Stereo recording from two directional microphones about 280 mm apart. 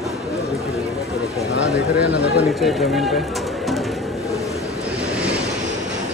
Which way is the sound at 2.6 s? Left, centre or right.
Centre.